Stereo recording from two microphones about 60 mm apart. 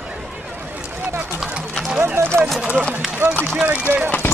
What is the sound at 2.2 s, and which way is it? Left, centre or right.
Clip-clop, right.